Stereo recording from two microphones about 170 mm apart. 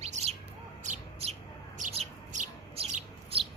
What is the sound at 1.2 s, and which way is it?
Bird, 35° right (ahead or behind).